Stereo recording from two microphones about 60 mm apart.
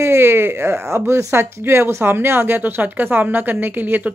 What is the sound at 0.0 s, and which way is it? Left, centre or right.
Speech, right.